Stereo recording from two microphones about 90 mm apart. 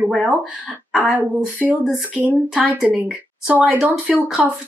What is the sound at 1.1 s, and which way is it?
Speech, 15° right (ahead or behind).